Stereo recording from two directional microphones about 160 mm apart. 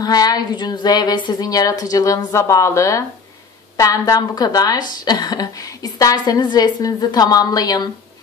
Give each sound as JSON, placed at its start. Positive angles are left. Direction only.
{"t": 0.0, "sound": "speech", "side_deg": 25}